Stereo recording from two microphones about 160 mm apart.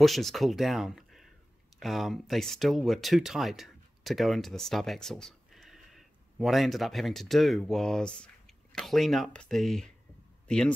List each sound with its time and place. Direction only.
0.0 s speech: centre (ahead or behind)